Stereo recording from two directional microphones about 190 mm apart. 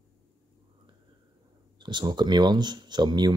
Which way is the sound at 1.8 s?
25° right (ahead or behind).